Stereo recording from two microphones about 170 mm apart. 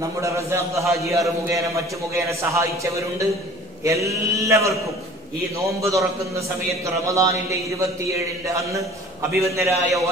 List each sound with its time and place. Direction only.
0.2 s a man's voice: 15° right (ahead or behind)
5.8 s a man's voice: 20° right (ahead or behind)
9.4 s a man's voice: 15° right (ahead or behind)